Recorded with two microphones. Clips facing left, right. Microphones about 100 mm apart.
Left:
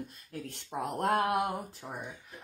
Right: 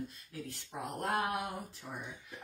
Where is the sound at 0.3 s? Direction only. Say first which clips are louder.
Left 5 dB; 70° left (ahead or behind).